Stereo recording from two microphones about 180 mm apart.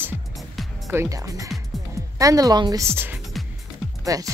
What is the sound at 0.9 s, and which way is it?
Speech, 20° right (ahead or behind).